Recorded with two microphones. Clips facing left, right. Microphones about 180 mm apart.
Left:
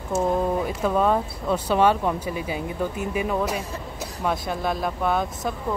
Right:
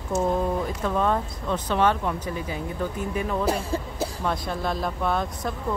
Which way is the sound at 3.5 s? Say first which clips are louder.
Right 4 dB; 30° right (ahead or behind).